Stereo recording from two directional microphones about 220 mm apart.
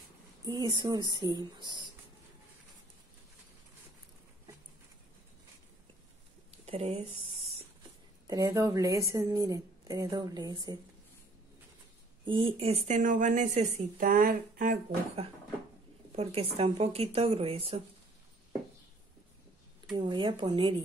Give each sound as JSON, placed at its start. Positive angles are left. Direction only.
{"t": 0.5, "sound": "a woman's voice", "side_deg": -15}
{"t": 6.6, "sound": "speech", "side_deg": -30}
{"t": 8.3, "sound": "a woman's voice", "side_deg": -15}
{"t": 12.3, "sound": "speech", "side_deg": -25}
{"t": 16.1, "sound": "a woman's voice", "side_deg": -25}
{"t": 20.0, "sound": "a woman's voice", "side_deg": -20}